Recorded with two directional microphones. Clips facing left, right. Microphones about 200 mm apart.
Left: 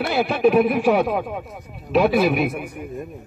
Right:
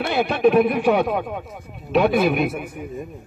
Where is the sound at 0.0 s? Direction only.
Centre (ahead or behind).